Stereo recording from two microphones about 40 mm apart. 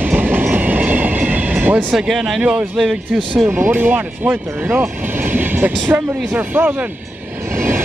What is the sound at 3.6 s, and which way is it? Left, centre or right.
Speech, right.